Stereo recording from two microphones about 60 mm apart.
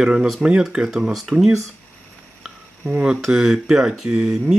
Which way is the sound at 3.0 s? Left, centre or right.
Centre.